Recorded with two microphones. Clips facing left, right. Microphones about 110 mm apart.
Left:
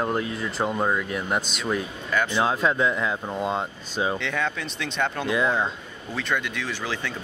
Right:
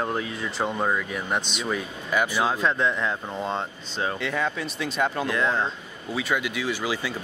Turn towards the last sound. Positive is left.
turn(degrees=-5)  # may be behind; listen again after turning